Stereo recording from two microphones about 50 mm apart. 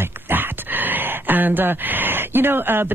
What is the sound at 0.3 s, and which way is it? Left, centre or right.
Speech, right.